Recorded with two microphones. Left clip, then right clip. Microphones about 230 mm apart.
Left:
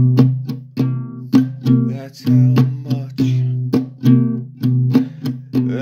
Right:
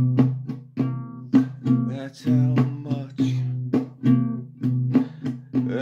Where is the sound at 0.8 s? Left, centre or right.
Left.